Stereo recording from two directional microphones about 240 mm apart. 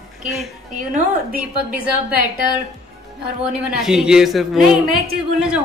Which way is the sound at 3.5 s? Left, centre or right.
Centre.